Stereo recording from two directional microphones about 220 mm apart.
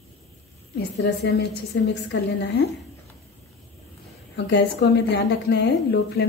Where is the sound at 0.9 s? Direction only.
50° left (ahead or behind).